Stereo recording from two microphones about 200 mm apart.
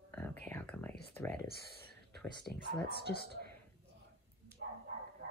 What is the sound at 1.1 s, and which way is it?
Speech, 10° left (ahead or behind).